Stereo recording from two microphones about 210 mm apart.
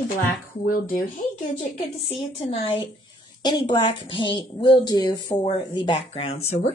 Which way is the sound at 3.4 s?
20° left (ahead or behind).